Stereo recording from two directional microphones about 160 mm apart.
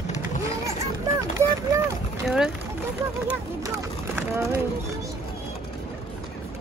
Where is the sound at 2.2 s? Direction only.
5° right (ahead or behind).